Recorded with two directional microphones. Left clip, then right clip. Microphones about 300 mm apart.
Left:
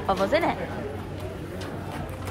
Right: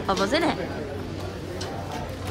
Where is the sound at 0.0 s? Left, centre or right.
Centre.